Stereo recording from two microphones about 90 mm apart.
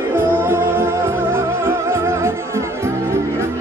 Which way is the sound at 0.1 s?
25° right (ahead or behind).